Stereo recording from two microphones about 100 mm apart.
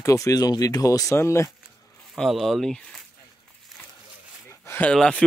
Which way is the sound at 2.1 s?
Centre (ahead or behind).